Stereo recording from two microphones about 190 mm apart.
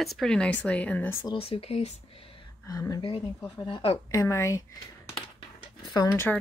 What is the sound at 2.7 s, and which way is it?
Speech, 20° left (ahead or behind).